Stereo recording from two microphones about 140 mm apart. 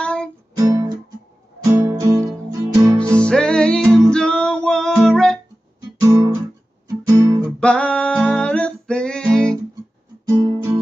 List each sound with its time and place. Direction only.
0.0 s music: 5° left (ahead or behind)
0.6 s music: 25° right (ahead or behind)
3.2 s music: 5° left (ahead or behind)
5.9 s guitar: 20° right (ahead or behind)
7.6 s music: 5° left (ahead or behind)
10.2 s guitar: 25° right (ahead or behind)